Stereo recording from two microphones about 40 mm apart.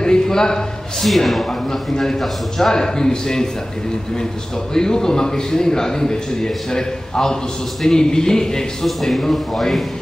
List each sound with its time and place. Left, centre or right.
0.0 s a sound: centre
1.0 s a man's voice: centre
4.7 s a man's voice: centre
8.8 s a man's voice: centre